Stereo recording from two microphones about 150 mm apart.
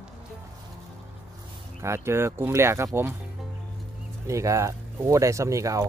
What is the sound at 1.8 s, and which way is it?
Speech, 15° right (ahead or behind).